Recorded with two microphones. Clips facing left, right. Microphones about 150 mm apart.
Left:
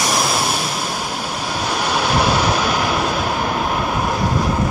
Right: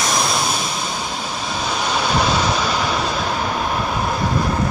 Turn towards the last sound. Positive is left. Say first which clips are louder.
# left 1 dB
turn(degrees=5)  # may be behind; listen again after turning